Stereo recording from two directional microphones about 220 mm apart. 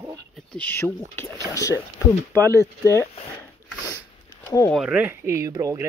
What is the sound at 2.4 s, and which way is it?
Speech, 15° right (ahead or behind).